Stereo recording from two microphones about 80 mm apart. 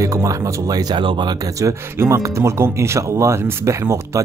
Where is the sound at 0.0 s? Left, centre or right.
Right.